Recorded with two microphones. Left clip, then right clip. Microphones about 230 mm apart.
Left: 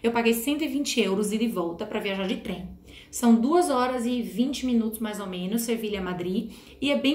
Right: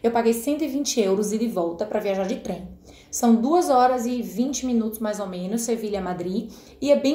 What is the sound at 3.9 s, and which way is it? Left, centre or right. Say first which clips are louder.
Speech: right 3 dB; right.